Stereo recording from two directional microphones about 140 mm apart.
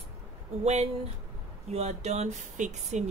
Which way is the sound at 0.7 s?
50° right (ahead or behind).